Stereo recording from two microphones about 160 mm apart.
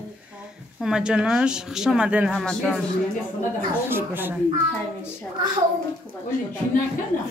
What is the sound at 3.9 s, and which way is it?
Speech, 15° right (ahead or behind).